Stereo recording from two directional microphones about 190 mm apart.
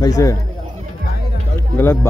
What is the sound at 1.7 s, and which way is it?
Speech, 10° left (ahead or behind).